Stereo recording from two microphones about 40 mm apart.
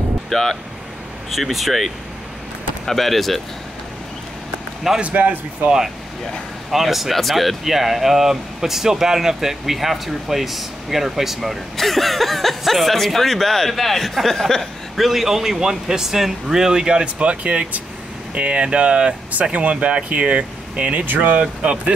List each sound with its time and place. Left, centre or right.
0.3 s speech: centre
5.1 s speech: right
6.7 s speech: centre
11.7 s speech: centre
15.0 s speech: centre; by 21.0 s right
21.0 s speech: right
21.4 s speech: right